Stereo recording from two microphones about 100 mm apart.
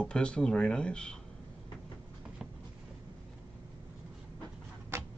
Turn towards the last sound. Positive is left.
turn(degrees=-25)  # may be behind; listen again after turning